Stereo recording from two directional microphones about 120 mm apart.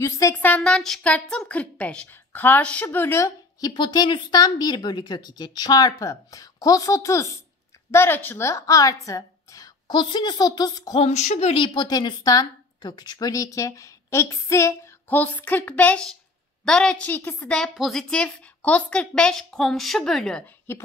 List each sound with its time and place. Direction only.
0.0 s a woman's voice: 25° left (ahead or behind)
0.6 s a woman's voice: 5° left (ahead or behind); by 11.0 s 30° left (ahead or behind)
11.0 s speech: 65° left (ahead or behind)
11.5 s a woman's voice: 40° left (ahead or behind); by 20.5 s 5° left (ahead or behind)